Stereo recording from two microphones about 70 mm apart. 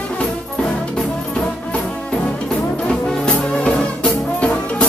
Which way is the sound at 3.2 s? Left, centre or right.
Centre.